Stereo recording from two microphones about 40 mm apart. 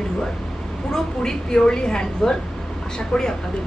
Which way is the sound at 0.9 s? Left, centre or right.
Centre.